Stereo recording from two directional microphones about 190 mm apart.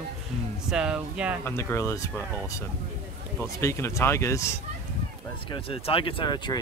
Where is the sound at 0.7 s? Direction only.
5° right (ahead or behind).